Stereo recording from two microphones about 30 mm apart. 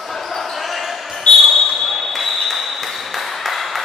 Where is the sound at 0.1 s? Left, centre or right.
Centre.